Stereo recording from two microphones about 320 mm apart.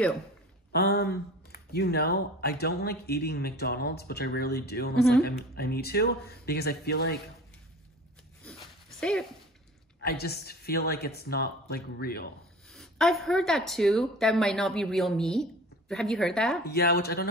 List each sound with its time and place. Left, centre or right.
0.7 s speech: left
10.0 s speech: left
12.7 s speech: centre
16.6 s speech: left